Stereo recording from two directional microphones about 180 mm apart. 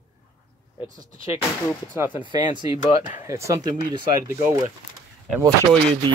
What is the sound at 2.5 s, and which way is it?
Speech, 25° right (ahead or behind).